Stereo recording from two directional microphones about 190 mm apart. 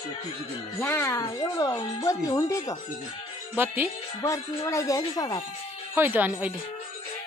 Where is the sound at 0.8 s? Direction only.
15° left (ahead or behind).